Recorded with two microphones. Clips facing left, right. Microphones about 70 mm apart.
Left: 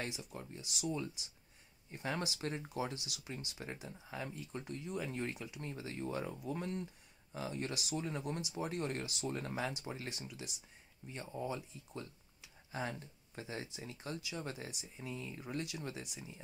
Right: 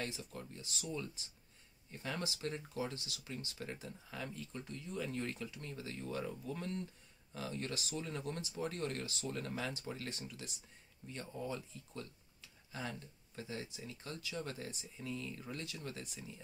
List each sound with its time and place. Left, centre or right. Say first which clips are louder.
0.0 s speech: even; centre
1.9 s speech: left 3 dB; left